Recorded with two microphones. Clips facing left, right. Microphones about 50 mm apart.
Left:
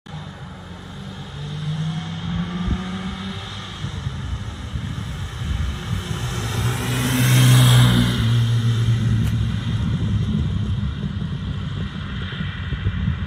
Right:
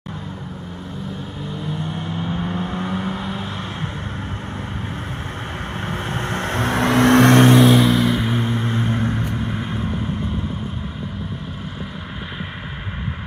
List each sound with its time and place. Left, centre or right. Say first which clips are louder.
1.6 s vehicle: even; centre
6.0 s vehicle: right 6 dB; right
7.5 s vehicle: right 5 dB; centre
8.3 s vehicle: right 3 dB; right